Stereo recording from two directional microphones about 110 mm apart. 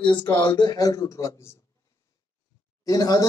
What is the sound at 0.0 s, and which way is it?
Speech, 45° left (ahead or behind).